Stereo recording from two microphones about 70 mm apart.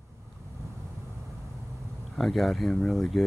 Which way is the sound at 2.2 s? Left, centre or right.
Centre.